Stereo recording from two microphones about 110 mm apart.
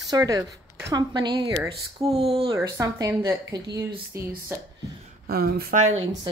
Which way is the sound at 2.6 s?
30° right (ahead or behind).